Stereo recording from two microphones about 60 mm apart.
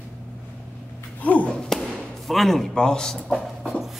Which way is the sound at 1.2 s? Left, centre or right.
Left.